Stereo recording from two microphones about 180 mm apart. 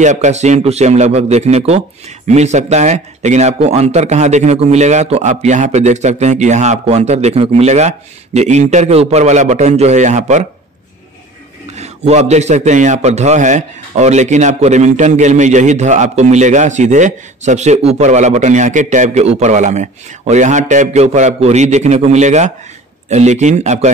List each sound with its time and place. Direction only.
0.0 s a man's voice: 40° right (ahead or behind)
11.7 s a man's voice: 35° right (ahead or behind)